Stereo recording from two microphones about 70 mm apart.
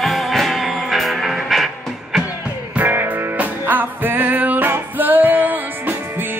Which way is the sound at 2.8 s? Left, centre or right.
Right.